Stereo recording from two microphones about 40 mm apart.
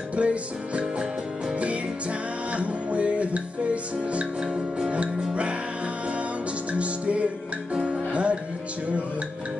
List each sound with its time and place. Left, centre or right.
0.1 s music: right
2.5 s music: right
4.4 s music: centre
6.7 s music: right
7.7 s music: right
8.1 s music: right